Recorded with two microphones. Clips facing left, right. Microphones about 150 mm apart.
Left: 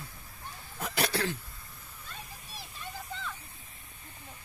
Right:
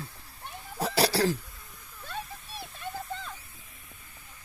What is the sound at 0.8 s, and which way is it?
Cough, 35° right (ahead or behind).